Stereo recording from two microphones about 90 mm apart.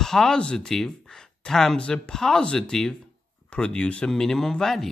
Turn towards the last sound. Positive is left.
turn(degrees=5)  # may be behind; listen again after turning